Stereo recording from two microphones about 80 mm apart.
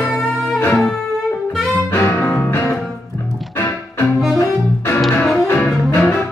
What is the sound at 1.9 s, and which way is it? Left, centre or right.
Music, left.